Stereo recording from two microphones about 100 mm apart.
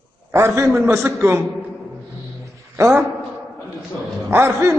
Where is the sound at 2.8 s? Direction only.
30° right (ahead or behind).